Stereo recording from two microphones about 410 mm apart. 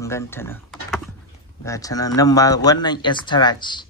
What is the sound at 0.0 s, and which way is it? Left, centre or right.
Speech, centre.